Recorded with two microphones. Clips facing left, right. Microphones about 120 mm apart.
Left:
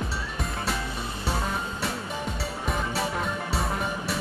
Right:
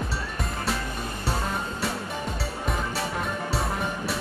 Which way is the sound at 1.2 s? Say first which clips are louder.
Even; centre (ahead or behind).